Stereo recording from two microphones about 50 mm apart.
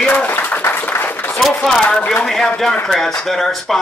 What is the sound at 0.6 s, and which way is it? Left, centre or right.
Applause, left.